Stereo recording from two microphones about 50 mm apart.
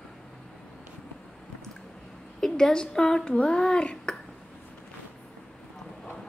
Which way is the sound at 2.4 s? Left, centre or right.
Centre.